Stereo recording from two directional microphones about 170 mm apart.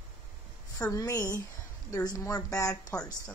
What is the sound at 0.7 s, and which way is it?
A woman's voice, 20° left (ahead or behind).